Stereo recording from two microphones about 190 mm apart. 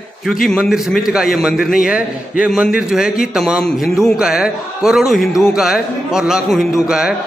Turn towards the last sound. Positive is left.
turn(degrees=-5)  # may be behind; listen again after turning